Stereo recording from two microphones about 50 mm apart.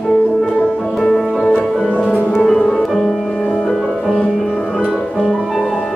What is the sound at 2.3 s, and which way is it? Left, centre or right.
Music, centre.